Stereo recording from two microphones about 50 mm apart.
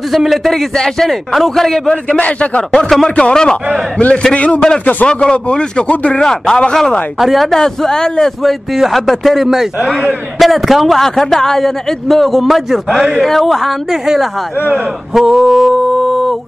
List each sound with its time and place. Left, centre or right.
0.1 s a man's voice: centre
0.5 s a man's voice: centre
2.0 s a man's voice: left
2.7 s a man's voice: centre
7.2 s a man's voice: centre
7.5 s a man's voice: centre
8.7 s a man's voice: centre
15.1 s a sound: centre